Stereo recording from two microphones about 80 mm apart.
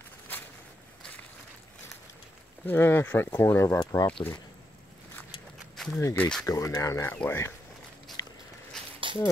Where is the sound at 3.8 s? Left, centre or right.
Left.